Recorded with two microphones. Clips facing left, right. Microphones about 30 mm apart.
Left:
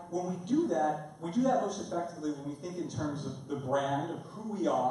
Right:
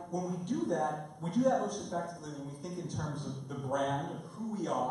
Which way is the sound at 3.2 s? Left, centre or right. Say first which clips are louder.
Left 3 dB; centre.